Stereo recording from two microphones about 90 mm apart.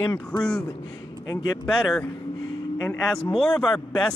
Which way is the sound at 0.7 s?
45° left (ahead or behind).